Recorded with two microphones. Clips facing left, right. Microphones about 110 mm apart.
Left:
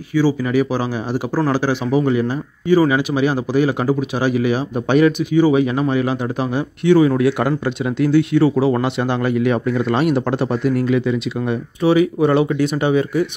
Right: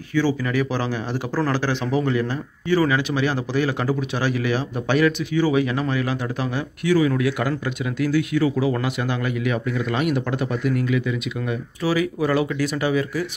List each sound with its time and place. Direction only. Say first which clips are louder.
0.1 s speech: left 5 dB; 10° left (ahead or behind)